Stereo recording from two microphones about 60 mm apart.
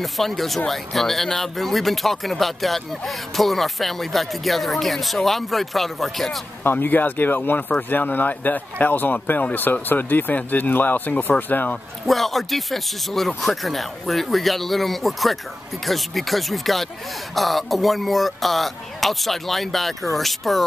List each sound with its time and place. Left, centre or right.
0.0 s speech: centre
6.6 s speech: left
12.1 s speech: centre